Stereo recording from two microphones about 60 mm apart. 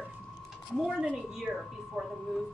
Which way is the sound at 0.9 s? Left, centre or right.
Centre.